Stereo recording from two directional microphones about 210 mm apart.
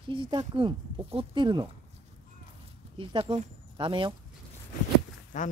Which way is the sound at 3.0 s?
25° right (ahead or behind).